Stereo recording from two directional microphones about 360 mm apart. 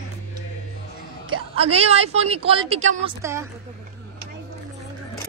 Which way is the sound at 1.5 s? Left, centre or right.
Centre.